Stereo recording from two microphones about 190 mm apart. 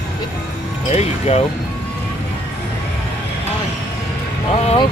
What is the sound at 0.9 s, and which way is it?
Speech, 35° left (ahead or behind).